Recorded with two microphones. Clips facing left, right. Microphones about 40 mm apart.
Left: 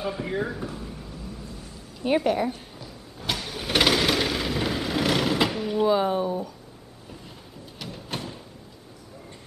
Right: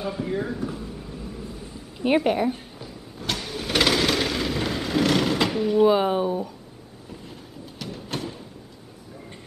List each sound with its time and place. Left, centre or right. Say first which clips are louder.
0.0 s speech: right 1 dB; centre
0.7 s vehicle: right 3 dB; centre
1.1 s a sound: right 3 dB; centre
3.2 s vehicle: right 1 dB; centre
5.9 s speech: right 2 dB; centre
7.8 s music: right 3 dB; centre